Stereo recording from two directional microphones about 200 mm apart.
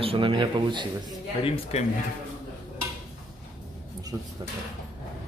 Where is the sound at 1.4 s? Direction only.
30° left (ahead or behind).